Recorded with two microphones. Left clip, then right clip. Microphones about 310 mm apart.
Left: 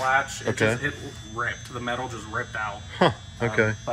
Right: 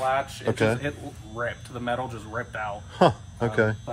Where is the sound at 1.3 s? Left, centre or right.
Right.